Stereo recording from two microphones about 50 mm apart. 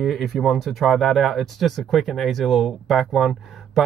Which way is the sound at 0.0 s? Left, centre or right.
Centre.